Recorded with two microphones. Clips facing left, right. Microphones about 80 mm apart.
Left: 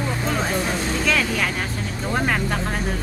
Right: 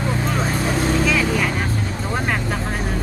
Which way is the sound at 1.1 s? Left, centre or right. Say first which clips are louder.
Right 2 dB; centre.